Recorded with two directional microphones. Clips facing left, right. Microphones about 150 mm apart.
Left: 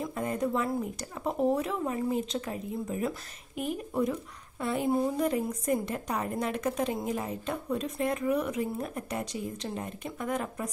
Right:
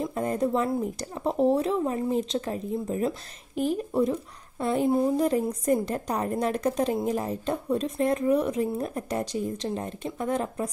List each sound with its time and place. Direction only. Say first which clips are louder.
0.0 s speech: right 4 dB; 35° right (ahead or behind)